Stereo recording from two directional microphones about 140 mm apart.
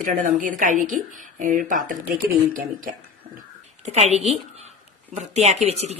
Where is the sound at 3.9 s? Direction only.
50° right (ahead or behind).